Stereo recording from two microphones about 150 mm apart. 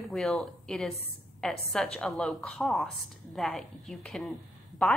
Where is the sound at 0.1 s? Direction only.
Centre (ahead or behind).